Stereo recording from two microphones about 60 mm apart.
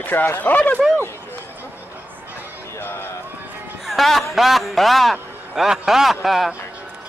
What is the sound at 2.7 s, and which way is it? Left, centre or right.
Run, left.